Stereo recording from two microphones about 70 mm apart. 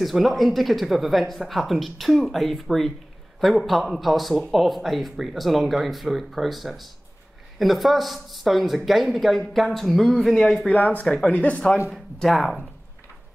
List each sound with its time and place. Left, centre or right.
0.0 s speech: centre
10.7 s speech: left
11.9 s speech: centre